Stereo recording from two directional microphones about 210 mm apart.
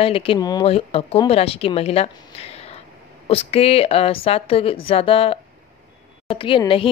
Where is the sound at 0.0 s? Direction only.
25° left (ahead or behind).